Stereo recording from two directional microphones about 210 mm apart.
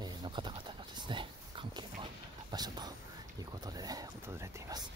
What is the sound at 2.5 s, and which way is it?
Whispering, 20° right (ahead or behind).